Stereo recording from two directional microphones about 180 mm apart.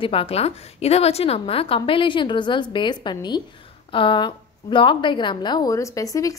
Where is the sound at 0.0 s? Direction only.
30° left (ahead or behind).